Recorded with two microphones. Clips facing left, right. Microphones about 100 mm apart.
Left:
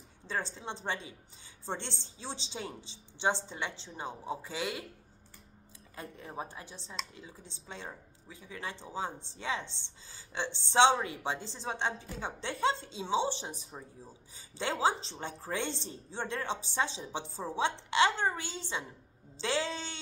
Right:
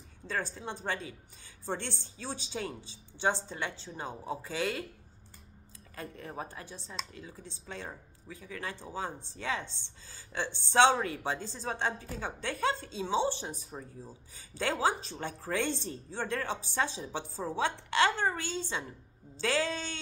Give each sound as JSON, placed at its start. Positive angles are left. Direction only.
{"t": 0.3, "sound": "speech", "side_deg": 20}
{"t": 5.9, "sound": "a woman's voice", "side_deg": 20}